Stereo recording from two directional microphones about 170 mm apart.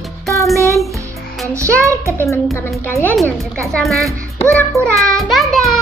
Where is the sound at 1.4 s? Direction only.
15° right (ahead or behind).